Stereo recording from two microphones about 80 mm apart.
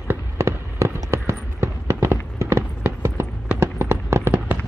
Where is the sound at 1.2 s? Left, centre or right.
Right.